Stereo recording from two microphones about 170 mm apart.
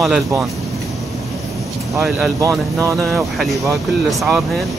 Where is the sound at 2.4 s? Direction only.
20° right (ahead or behind).